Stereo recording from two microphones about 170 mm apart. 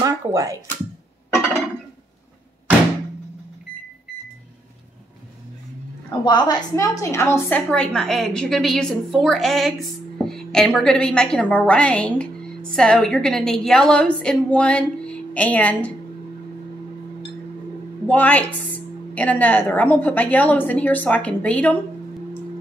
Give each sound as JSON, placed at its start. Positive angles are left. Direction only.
{"t": 0.0, "sound": "speech", "side_deg": -20}
{"t": 6.2, "sound": "a woman's voice", "side_deg": 25}
{"t": 18.0, "sound": "a woman's voice", "side_deg": 10}